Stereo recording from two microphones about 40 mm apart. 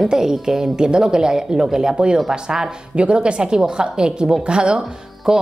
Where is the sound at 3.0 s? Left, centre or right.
Right.